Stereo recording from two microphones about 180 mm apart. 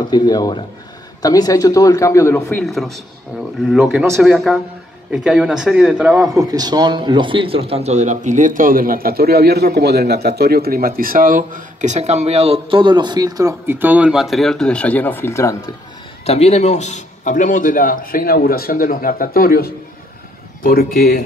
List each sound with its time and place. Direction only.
0.1 s speech: 20° left (ahead or behind)
2.6 s a man's voice: centre (ahead or behind)
6.3 s a man's voice: 20° right (ahead or behind); by 15.7 s 15° left (ahead or behind)
16.3 s a man's voice: 35° left (ahead or behind)